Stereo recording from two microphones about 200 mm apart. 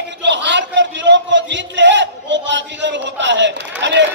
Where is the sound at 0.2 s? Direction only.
60° right (ahead or behind).